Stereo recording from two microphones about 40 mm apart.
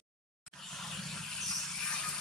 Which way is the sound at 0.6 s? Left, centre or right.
Centre.